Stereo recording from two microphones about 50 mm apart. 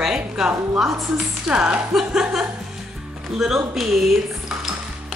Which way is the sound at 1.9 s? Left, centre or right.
Centre.